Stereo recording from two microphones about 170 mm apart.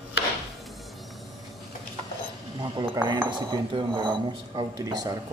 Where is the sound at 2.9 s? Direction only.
25° right (ahead or behind).